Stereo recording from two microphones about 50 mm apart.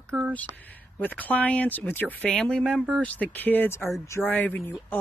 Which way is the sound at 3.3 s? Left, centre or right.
Left.